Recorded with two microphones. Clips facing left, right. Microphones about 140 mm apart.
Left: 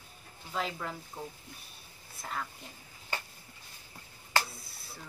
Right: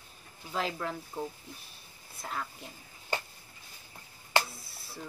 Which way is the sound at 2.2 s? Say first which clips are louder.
Right 1 dB; 5° right (ahead or behind).